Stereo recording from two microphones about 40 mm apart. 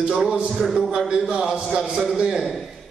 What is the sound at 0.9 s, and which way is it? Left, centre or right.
Speech, right.